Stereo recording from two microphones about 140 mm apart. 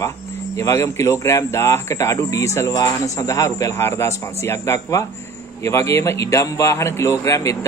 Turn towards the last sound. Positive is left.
turn(degrees=20)  # may be behind; listen again after turning